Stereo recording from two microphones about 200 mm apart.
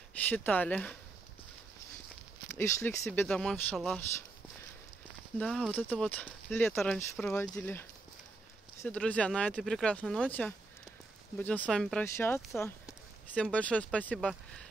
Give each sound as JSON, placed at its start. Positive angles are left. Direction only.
{"t": 0.2, "sound": "speech", "side_deg": 10}
{"t": 2.5, "sound": "speech", "side_deg": 15}
{"t": 5.4, "sound": "speech", "side_deg": 5}
{"t": 8.8, "sound": "speech", "side_deg": 5}